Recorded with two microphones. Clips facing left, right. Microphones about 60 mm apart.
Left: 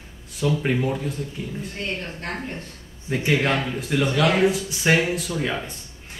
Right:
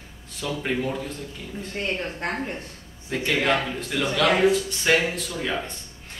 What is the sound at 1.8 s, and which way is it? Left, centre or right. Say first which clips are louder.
Speech: right 5 dB; right.